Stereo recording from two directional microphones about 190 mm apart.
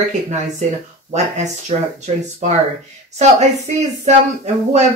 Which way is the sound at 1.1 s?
35° right (ahead or behind).